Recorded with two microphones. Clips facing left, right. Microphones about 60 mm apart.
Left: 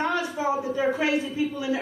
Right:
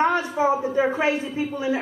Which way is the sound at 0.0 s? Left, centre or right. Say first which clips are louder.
Right 5 dB; right.